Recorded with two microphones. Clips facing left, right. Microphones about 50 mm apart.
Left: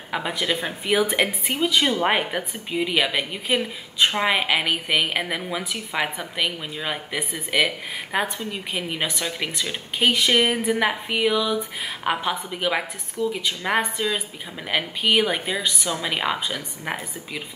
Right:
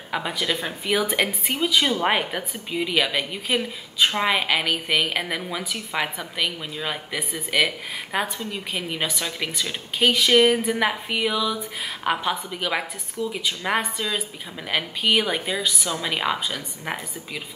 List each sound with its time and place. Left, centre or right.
0.1 s a woman's voice: centre